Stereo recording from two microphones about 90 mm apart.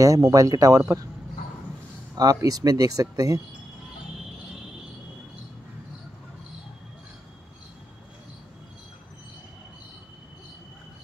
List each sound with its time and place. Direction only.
0.0 s speech: 40° right (ahead or behind)
2.1 s speech: 45° right (ahead or behind)